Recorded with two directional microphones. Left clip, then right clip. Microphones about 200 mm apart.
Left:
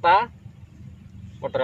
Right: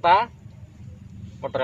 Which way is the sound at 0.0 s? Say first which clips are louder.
Even; 20° left (ahead or behind).